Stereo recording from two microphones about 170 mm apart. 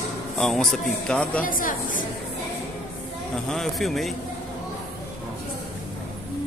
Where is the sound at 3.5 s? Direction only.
Centre (ahead or behind).